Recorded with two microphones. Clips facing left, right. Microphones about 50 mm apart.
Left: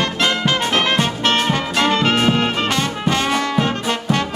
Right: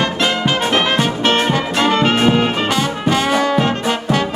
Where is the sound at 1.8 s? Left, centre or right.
Right.